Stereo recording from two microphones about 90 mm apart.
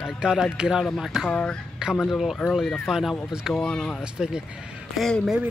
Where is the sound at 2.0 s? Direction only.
Centre (ahead or behind).